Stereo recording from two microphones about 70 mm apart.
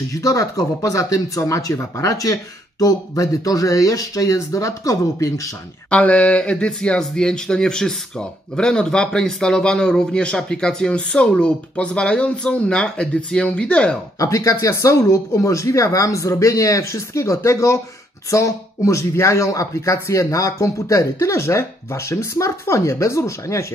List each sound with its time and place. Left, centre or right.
0.1 s speech: left
5.9 s speech: centre
14.1 s speech: left